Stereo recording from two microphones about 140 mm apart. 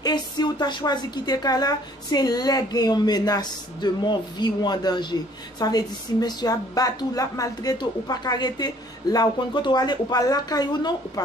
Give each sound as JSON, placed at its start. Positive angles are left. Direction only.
{"t": 0.0, "sound": "a woman's voice", "side_deg": 30}